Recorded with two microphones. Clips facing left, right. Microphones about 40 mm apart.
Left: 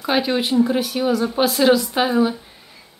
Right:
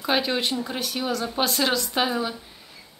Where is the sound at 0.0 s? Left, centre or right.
Centre.